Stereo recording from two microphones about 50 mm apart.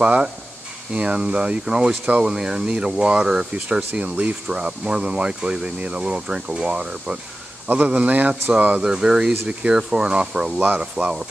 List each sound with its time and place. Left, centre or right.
0.0 s speech: right
2.2 s speech: centre
3.7 s speech: right
7.6 s speech: right
8.8 s speech: centre
11.0 s speech: centre